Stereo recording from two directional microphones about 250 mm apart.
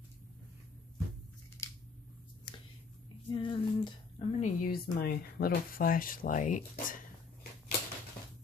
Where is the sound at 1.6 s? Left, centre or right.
Centre.